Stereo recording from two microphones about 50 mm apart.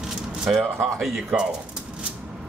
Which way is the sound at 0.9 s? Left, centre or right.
Centre.